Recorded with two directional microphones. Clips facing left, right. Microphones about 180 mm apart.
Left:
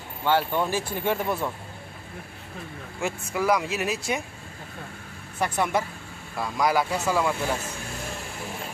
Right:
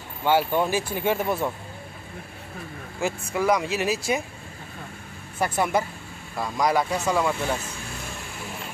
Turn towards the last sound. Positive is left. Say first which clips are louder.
# right 1 dB
turn(degrees=5)  # may be behind; listen again after turning